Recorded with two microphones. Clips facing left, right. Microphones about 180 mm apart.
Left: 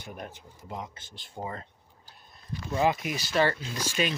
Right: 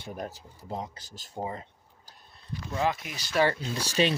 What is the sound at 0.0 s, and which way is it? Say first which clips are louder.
Speech: right 4 dB; 30° right (ahead or behind).